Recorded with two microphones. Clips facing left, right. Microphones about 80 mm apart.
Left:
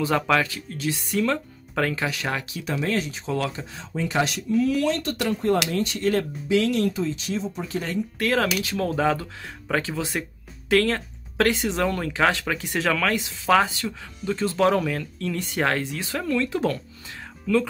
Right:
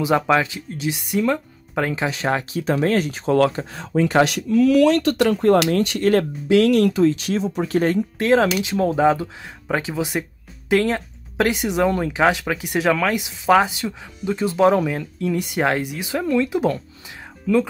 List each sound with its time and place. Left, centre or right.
0.0 s speech: centre; by 8.0 s right
8.2 s speech: right